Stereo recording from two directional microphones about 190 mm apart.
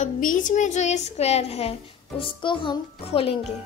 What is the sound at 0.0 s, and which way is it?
A woman's voice, 45° left (ahead or behind).